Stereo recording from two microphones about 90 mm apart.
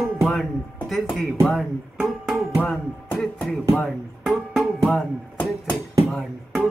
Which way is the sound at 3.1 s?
5° left (ahead or behind).